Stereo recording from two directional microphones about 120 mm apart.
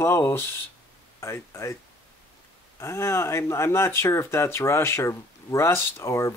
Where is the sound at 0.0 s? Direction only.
20° left (ahead or behind).